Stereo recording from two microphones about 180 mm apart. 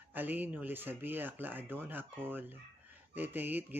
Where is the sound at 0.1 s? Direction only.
10° right (ahead or behind).